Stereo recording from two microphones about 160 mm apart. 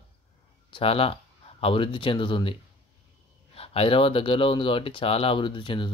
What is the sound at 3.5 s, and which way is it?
Speech, 35° left (ahead or behind).